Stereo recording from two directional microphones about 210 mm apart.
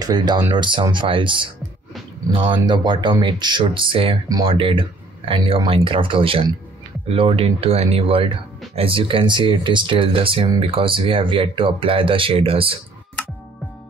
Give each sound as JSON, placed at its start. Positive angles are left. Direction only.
{"t": 0.0, "sound": "speech", "side_deg": -20}
{"t": 2.5, "sound": "speech", "side_deg": -20}